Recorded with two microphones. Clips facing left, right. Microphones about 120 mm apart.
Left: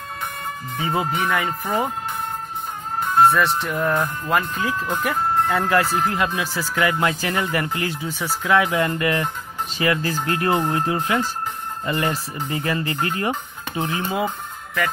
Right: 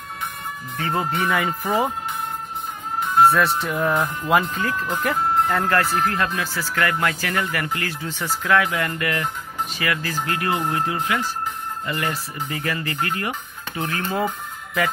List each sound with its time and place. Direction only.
0.7 s speech: 10° left (ahead or behind)
3.2 s speech: centre (ahead or behind)
4.6 s speech: 15° left (ahead or behind)
8.5 s speech: 25° left (ahead or behind)